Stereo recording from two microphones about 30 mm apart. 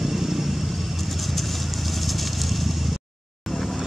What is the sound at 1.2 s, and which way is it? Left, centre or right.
Vehicle, centre.